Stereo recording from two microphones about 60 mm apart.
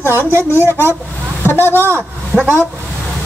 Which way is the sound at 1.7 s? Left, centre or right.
Right.